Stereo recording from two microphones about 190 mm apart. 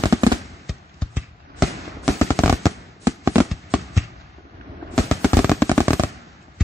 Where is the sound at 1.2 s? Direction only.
10° right (ahead or behind).